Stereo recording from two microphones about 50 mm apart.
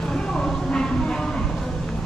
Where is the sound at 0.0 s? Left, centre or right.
Centre.